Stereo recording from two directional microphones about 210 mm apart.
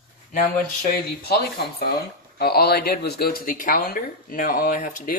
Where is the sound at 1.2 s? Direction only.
45° left (ahead or behind).